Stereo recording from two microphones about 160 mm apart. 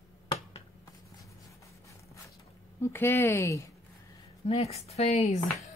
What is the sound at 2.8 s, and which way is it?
Speech, 15° left (ahead or behind).